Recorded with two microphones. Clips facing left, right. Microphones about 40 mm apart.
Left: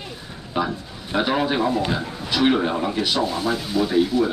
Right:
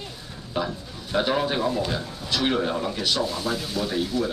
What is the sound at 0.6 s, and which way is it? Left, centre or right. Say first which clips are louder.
A man's voice: left 4 dB; centre.